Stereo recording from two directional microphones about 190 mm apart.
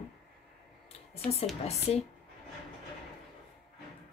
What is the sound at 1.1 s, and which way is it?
Speech, 35° left (ahead or behind).